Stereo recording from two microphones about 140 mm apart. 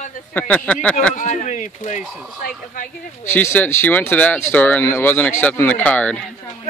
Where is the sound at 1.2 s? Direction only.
60° left (ahead or behind).